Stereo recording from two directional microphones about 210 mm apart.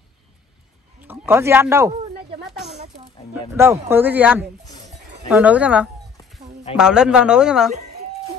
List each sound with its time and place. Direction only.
1.0 s speech: 10° right (ahead or behind)
3.5 s speech: 10° right (ahead or behind)
4.6 s dog: 15° left (ahead or behind)
5.3 s a man's voice: 5° right (ahead or behind)
7.7 s a sound: 30° right (ahead or behind)